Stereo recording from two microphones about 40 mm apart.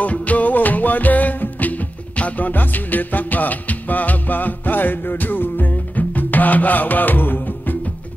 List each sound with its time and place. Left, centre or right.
0.0 s music: left